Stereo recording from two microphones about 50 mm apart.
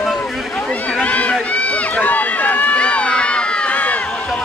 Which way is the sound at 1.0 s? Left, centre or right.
Left.